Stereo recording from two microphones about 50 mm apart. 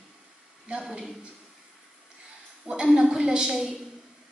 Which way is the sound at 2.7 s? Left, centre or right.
Centre.